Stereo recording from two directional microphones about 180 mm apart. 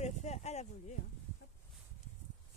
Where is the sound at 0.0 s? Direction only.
40° left (ahead or behind).